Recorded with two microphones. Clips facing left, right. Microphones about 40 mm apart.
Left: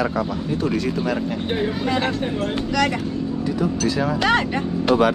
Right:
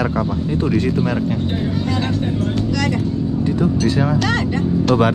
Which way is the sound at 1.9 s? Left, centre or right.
Left.